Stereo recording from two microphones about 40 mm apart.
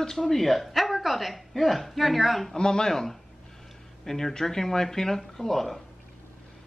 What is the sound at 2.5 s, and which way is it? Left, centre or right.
Speech, centre.